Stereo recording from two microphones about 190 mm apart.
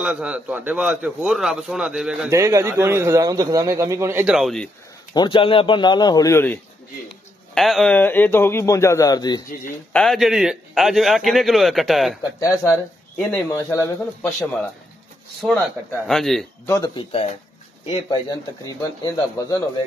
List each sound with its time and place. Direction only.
0.0 s a man's voice: 5° right (ahead or behind)
2.3 s a man's voice: 15° right (ahead or behind); by 4.6 s centre (ahead or behind)
5.1 s speech: 25° left (ahead or behind)
7.5 s speech: centre (ahead or behind); by 9.4 s 20° left (ahead or behind)
9.9 s a man's voice: centre (ahead or behind)
12.2 s speech: 15° left (ahead or behind)
13.2 s speech: 5° left (ahead or behind)
15.4 s a man's voice: 5° right (ahead or behind)
16.6 s speech: 20° left (ahead or behind)
18.7 s speech: 20° left (ahead or behind)